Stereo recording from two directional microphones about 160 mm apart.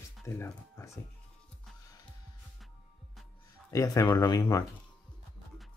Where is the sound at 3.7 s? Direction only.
20° left (ahead or behind).